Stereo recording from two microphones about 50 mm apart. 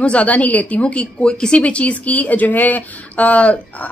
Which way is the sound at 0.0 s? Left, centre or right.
Left.